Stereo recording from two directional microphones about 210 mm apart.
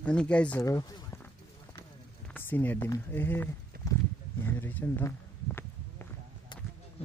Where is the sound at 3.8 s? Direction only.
50° right (ahead or behind).